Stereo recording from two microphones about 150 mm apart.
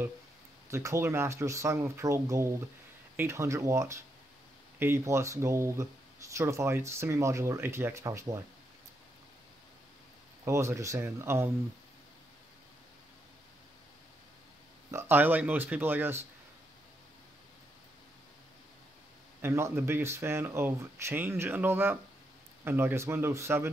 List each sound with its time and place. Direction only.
0.7 s speech: 20° right (ahead or behind)
10.4 s speech: 20° right (ahead or behind)
14.9 s speech: 15° right (ahead or behind)
19.4 s speech: 15° right (ahead or behind)